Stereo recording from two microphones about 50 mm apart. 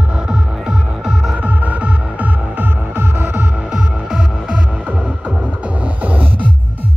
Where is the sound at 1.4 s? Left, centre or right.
Right.